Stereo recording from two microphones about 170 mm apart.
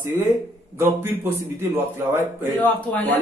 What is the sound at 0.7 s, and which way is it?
A man's voice, 15° right (ahead or behind).